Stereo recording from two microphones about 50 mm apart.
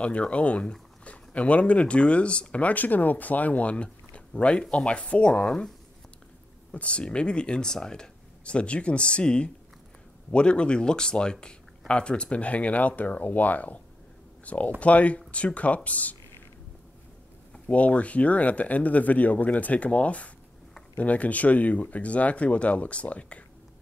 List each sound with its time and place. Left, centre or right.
0.0 s speech: left
6.7 s speech: left
17.6 s speech: left